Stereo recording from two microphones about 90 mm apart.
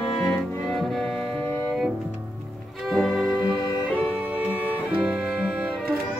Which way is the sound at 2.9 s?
5° left (ahead or behind).